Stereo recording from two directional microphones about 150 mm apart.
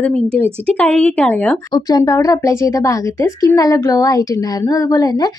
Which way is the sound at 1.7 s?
25° left (ahead or behind).